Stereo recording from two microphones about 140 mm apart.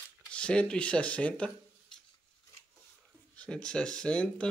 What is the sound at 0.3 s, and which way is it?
Speech, 10° left (ahead or behind).